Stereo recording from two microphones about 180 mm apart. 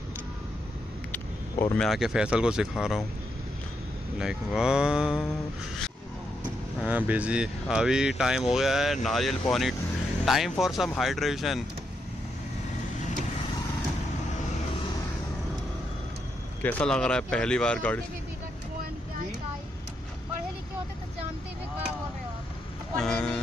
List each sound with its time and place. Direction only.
1.1 s vehicle: 10° left (ahead or behind)
1.9 s speech: 5° right (ahead or behind)
4.2 s speech: 5° right (ahead or behind)
6.8 s speech: 10° right (ahead or behind)
16.6 s speech: 5° left (ahead or behind)
22.9 s music: 5° left (ahead or behind)